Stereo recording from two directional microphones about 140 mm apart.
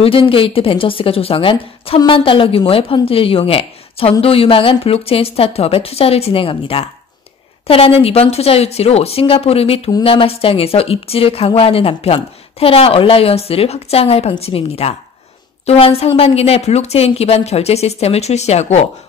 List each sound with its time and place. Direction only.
0.0 s a woman's voice: 40° left (ahead or behind)